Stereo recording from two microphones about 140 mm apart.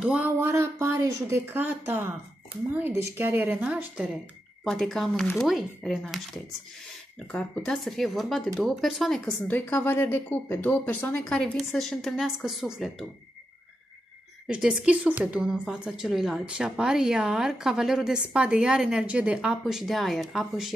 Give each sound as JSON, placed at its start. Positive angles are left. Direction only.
{"t": 0.0, "sound": "speech", "side_deg": -10}
{"t": 14.5, "sound": "speech", "side_deg": -5}